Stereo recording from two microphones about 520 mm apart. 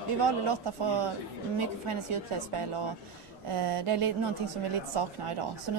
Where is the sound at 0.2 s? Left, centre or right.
Right.